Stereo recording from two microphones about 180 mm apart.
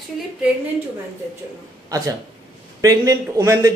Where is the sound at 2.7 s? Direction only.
20° right (ahead or behind).